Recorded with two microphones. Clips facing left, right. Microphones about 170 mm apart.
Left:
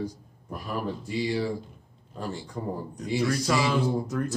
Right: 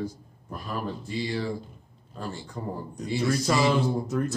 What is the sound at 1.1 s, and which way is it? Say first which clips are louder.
Speech: left 3 dB; 10° left (ahead or behind).